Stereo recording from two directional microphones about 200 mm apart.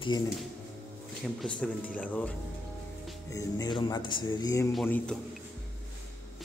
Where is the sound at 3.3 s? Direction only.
20° left (ahead or behind).